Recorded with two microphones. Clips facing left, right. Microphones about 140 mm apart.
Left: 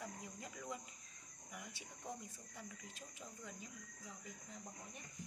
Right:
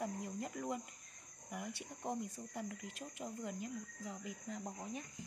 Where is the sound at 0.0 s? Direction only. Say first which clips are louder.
Right 9 dB; 50° right (ahead or behind).